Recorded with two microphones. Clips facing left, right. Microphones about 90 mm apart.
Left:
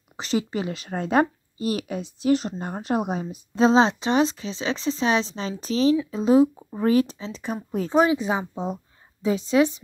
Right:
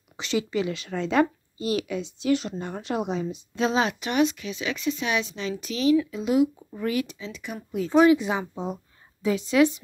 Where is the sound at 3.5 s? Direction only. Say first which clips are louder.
Left 7 dB; 30° left (ahead or behind).